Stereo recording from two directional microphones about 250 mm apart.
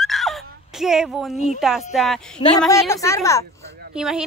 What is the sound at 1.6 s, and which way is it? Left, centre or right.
Speech, centre.